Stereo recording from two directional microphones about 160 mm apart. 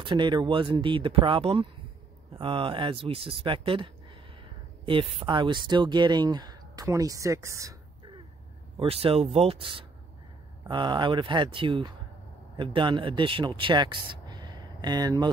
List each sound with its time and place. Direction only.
0.0 s speech: 30° right (ahead or behind)
8.7 s speech: 35° right (ahead or behind)